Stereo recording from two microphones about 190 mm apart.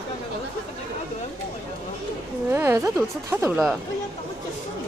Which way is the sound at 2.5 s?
10° right (ahead or behind).